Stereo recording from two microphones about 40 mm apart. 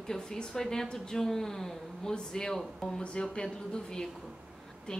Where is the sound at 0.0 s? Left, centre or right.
Centre.